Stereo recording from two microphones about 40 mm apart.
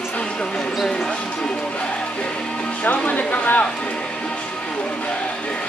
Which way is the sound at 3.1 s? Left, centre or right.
Left.